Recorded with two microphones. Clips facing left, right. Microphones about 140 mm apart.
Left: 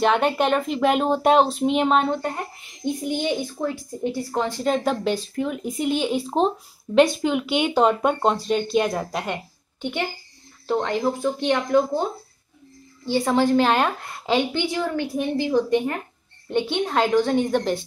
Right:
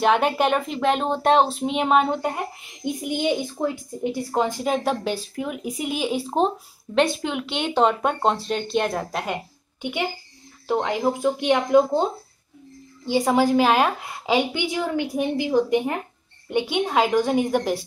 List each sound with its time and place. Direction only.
0.0 s a woman's voice: 5° right (ahead or behind)
4.6 s a woman's voice: 5° right (ahead or behind)